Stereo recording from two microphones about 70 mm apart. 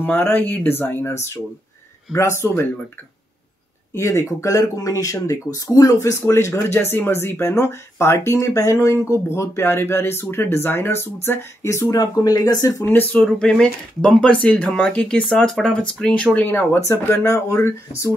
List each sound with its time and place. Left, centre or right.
0.0 s speech: left
2.1 s speech: left
3.9 s speech: left
11.9 s speech: left
13.1 s speech: centre
16.3 s speech: left
16.8 s speech: left